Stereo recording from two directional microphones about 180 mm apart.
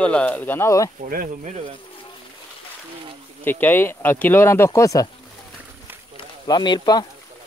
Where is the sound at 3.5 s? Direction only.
10° left (ahead or behind).